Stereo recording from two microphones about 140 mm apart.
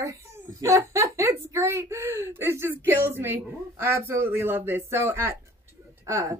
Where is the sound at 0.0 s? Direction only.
20° right (ahead or behind).